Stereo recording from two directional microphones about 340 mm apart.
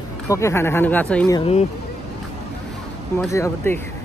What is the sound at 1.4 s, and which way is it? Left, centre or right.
Speech, centre.